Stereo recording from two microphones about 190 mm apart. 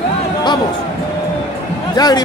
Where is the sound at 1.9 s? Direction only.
20° left (ahead or behind).